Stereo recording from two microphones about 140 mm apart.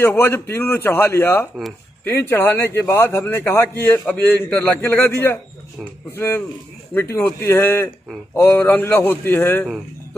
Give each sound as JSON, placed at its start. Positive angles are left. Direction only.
{"t": 0.0, "sound": "a man's voice", "side_deg": 15}